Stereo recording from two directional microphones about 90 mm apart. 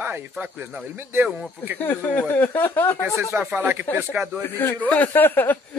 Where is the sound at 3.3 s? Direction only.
25° right (ahead or behind).